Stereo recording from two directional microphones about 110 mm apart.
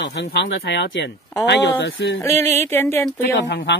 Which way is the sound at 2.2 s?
25° left (ahead or behind).